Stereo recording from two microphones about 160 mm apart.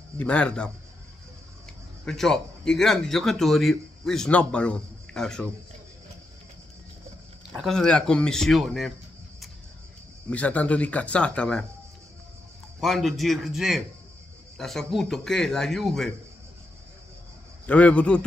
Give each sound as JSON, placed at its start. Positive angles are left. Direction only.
{"t": 0.2, "sound": "speech", "side_deg": 5}
{"t": 2.0, "sound": "a man's voice", "side_deg": 0}
{"t": 7.5, "sound": "a man's voice", "side_deg": 0}
{"t": 10.3, "sound": "speech", "side_deg": 10}
{"t": 12.8, "sound": "a man's voice", "side_deg": 0}
{"t": 17.6, "sound": "speech", "side_deg": 10}